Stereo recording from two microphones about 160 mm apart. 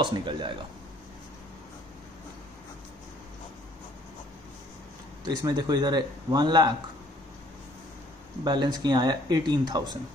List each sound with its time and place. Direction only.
0.0 s speech: 30° right (ahead or behind)
5.2 s speech: 25° right (ahead or behind)
8.5 s speech: 30° right (ahead or behind)